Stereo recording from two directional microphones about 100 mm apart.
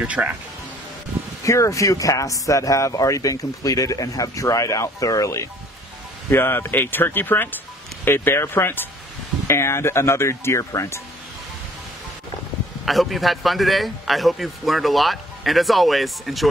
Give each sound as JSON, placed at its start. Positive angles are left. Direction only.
{"t": 0.0, "sound": "speech", "side_deg": -15}
{"t": 1.4, "sound": "speech", "side_deg": 30}
{"t": 6.3, "sound": "speech", "side_deg": 20}
{"t": 12.8, "sound": "a man's voice", "side_deg": 0}